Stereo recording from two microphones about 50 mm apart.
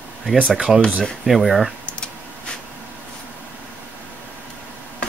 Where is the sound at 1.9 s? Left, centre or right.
Left.